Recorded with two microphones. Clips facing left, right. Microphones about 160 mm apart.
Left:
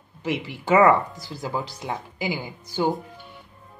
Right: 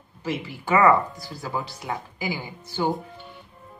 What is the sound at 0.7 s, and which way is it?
Speech, 20° left (ahead or behind).